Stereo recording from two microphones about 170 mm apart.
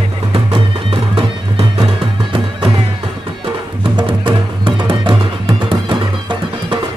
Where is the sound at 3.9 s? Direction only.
30° right (ahead or behind).